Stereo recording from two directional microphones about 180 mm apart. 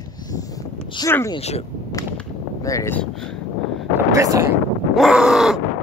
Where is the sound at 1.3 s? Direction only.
35° left (ahead or behind).